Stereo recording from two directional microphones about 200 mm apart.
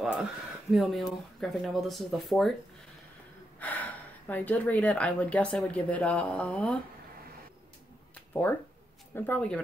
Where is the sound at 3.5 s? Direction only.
10° left (ahead or behind).